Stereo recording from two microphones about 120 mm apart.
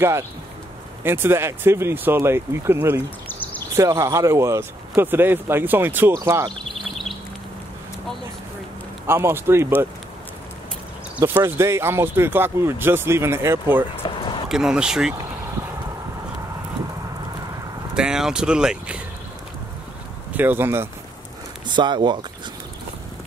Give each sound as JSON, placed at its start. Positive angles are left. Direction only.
{"t": 1.0, "sound": "speech", "side_deg": -20}
{"t": 6.1, "sound": "speech", "side_deg": -30}
{"t": 6.5, "sound": "a sound", "side_deg": 0}
{"t": 9.0, "sound": "speech", "side_deg": -20}
{"t": 11.1, "sound": "speech", "side_deg": -15}
{"t": 14.0, "sound": "a sound", "side_deg": 40}
{"t": 14.5, "sound": "speech", "side_deg": -5}
{"t": 17.9, "sound": "speech", "side_deg": -5}
{"t": 20.3, "sound": "speech", "side_deg": -15}
{"t": 21.6, "sound": "speech", "side_deg": -40}